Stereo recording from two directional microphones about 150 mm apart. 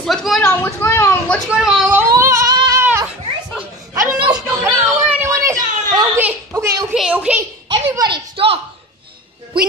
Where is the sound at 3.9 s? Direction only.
20° right (ahead or behind).